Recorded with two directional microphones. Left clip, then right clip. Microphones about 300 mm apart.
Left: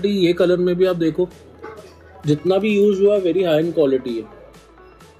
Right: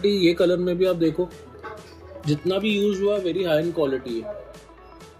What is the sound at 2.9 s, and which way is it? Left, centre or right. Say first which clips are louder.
Speech: left 7 dB; left.